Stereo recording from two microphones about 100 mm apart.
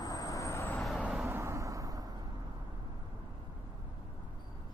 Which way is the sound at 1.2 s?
25° right (ahead or behind).